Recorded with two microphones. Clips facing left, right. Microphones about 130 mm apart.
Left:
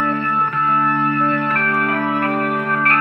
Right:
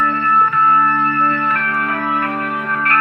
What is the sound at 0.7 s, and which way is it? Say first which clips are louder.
Music: right 2 dB; 40° left (ahead or behind).